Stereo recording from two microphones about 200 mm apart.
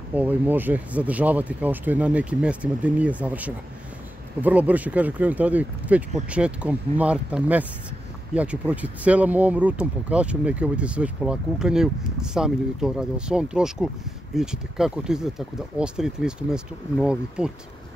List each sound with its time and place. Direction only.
0.1 s speech: 10° right (ahead or behind)